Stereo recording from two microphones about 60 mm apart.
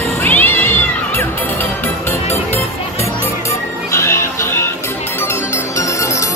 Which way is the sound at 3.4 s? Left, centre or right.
Left.